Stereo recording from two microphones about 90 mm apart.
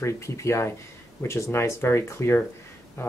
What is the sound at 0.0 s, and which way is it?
Speech, 30° left (ahead or behind).